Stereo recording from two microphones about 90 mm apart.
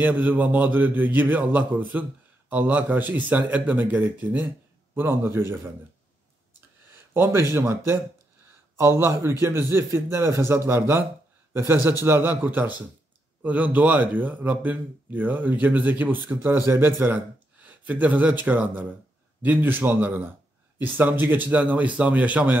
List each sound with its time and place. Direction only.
0.0 s a man's voice: 20° right (ahead or behind)
7.5 s a man's voice: 25° right (ahead or behind)